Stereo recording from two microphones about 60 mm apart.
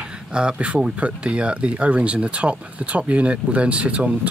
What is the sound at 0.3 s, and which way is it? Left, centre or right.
Speech, centre.